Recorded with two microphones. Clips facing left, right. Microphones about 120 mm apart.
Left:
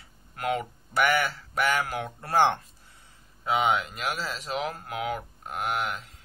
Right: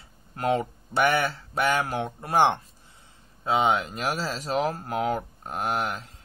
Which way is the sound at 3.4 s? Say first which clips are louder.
Right 2 dB; 30° right (ahead or behind).